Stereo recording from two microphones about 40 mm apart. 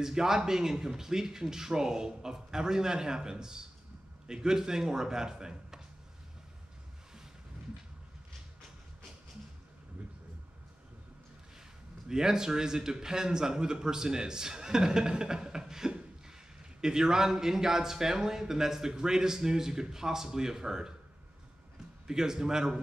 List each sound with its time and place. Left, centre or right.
0.0 s speech: centre
12.1 s speech: centre
22.0 s speech: centre